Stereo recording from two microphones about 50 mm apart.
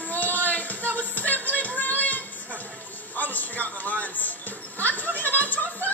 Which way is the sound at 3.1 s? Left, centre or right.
Left.